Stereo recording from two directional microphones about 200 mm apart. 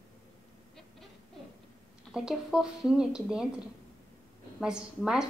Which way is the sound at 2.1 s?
5° right (ahead or behind).